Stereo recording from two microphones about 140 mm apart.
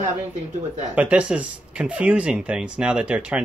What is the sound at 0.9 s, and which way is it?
Speech, 10° right (ahead or behind).